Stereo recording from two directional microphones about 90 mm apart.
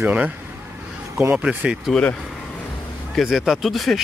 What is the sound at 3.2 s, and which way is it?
Speech, centre (ahead or behind).